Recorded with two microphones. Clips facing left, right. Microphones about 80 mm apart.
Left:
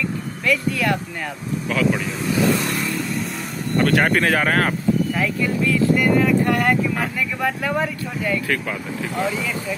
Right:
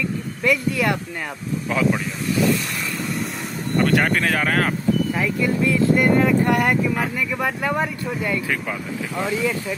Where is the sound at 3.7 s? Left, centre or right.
Centre.